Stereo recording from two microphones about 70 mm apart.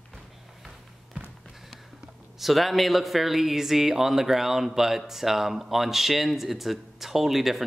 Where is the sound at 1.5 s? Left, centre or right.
Centre.